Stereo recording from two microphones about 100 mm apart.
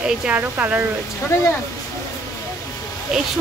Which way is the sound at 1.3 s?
30° left (ahead or behind).